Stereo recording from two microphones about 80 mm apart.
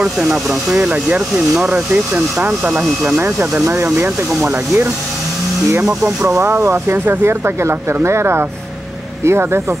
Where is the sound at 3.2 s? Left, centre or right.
Right.